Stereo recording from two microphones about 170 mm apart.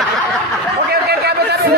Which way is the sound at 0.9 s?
70° right (ahead or behind).